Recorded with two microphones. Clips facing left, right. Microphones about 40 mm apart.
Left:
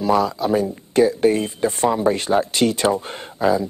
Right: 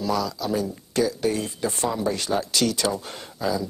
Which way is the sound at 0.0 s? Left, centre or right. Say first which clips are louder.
Left 7 dB; left.